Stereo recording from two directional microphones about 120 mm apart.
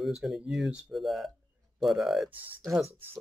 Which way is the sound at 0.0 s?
Centre (ahead or behind).